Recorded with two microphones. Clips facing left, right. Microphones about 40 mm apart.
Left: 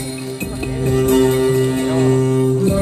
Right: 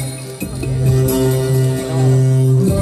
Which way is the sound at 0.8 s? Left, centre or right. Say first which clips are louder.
Left 2 dB; left.